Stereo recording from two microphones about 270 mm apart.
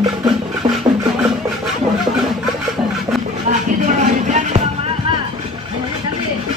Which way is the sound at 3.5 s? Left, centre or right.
Right.